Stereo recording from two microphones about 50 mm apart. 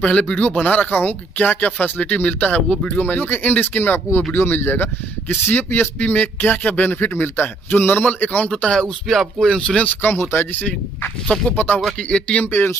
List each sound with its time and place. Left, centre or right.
0.0 s speech: left
8.5 s a man's voice: centre
9.0 s speech: centre
9.4 s speech: centre
10.3 s a man's voice: left
12.4 s speech: left